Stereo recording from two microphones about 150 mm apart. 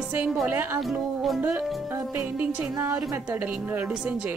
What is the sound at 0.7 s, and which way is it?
Speech, centre (ahead or behind).